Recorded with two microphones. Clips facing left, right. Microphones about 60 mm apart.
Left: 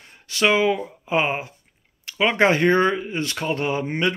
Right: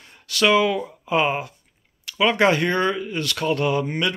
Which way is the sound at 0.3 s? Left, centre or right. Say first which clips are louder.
Right 1 dB; left.